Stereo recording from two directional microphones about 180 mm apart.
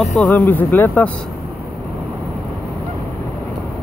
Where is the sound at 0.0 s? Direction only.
Centre (ahead or behind).